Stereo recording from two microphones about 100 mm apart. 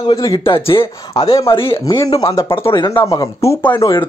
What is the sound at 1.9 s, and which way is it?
Speech, 35° left (ahead or behind).